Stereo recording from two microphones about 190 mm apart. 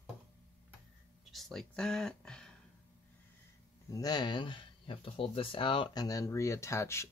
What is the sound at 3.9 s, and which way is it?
Speech, 20° left (ahead or behind).